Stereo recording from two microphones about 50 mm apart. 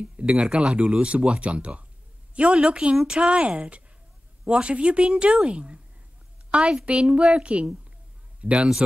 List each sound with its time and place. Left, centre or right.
0.0 s a man's voice: right